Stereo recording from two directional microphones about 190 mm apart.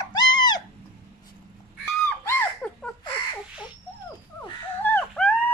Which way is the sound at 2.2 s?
10° left (ahead or behind).